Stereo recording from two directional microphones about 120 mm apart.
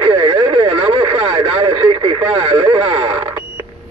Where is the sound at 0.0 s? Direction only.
50° right (ahead or behind).